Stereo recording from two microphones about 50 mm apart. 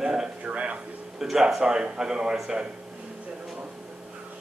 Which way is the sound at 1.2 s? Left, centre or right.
Centre.